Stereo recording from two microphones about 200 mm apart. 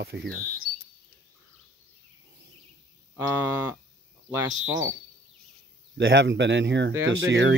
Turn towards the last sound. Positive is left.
turn(degrees=-70)  # may be behind; listen again after turning